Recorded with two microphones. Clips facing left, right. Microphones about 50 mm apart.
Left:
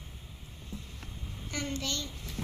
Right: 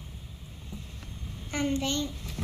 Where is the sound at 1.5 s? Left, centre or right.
Right.